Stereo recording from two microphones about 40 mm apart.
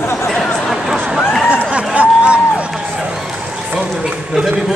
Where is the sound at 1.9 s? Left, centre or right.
Right.